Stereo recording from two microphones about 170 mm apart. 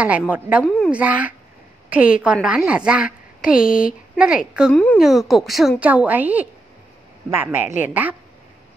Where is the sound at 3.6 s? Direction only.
55° left (ahead or behind).